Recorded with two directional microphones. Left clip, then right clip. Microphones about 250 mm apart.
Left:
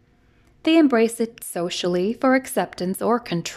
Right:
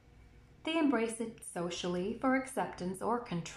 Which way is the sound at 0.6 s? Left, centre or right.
Left.